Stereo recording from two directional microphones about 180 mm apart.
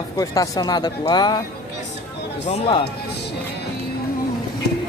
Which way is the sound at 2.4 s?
35° left (ahead or behind).